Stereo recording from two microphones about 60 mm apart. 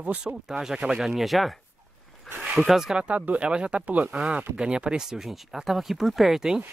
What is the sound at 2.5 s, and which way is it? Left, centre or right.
Speech, centre.